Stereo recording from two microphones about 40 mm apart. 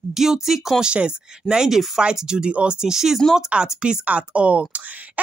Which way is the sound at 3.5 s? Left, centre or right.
Right.